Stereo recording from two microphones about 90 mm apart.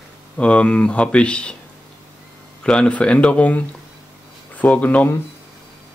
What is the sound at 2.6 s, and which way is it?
Speech, 10° left (ahead or behind).